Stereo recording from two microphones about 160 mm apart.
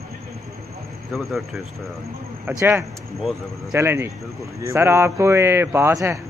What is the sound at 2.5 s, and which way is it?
Speech, 15° right (ahead or behind).